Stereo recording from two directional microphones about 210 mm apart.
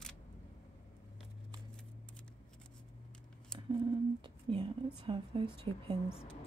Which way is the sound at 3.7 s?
25° right (ahead or behind).